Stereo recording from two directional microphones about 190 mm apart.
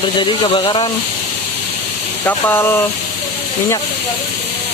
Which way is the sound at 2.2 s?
10° left (ahead or behind).